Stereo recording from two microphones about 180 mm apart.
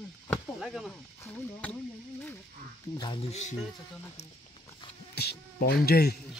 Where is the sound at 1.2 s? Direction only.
5° left (ahead or behind).